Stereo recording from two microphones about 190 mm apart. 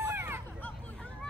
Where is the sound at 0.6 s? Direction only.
5° left (ahead or behind).